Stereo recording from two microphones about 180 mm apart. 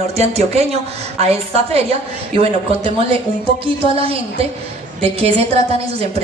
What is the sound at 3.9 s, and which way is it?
A woman's voice, 30° right (ahead or behind).